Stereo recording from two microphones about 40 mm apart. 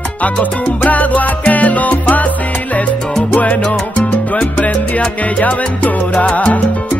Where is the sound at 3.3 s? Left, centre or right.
Left.